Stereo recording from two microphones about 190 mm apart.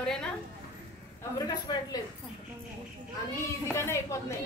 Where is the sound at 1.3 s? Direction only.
20° left (ahead or behind).